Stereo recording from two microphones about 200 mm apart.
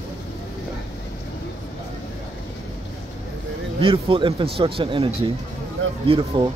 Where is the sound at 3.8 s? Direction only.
25° right (ahead or behind).